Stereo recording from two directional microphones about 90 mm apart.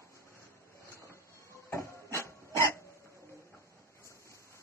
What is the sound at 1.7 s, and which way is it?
Printer, 30° left (ahead or behind).